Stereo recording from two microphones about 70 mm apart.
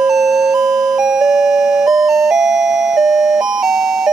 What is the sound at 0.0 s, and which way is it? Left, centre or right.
Doorbell, centre.